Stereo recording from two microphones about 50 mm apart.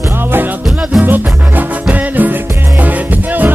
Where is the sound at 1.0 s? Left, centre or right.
Right.